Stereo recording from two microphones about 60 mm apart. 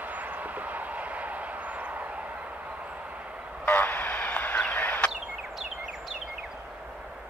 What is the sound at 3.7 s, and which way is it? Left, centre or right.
Fowl, left.